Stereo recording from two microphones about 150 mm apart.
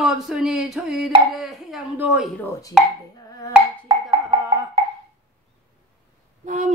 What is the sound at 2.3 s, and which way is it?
Speech, 15° left (ahead or behind).